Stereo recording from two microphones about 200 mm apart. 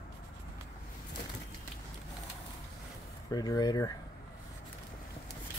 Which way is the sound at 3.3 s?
20° left (ahead or behind).